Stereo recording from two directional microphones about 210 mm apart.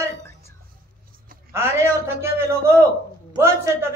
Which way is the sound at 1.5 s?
10° right (ahead or behind).